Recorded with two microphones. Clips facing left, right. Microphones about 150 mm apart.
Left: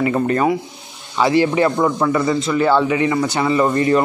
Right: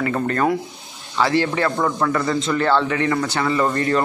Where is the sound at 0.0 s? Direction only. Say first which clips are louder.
Left 3 dB; 15° left (ahead or behind).